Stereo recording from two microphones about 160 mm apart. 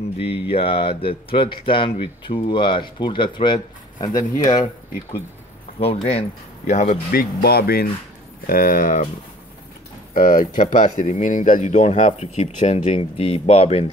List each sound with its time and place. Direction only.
0.2 s speech: 35° left (ahead or behind)
5.8 s speech: 35° left (ahead or behind)
6.7 s speech: 50° left (ahead or behind)
7.1 s speech: 70° left (ahead or behind)
8.5 s speech: 60° left (ahead or behind)
10.1 s speech: 60° left (ahead or behind); by 13.8 s 40° left (ahead or behind)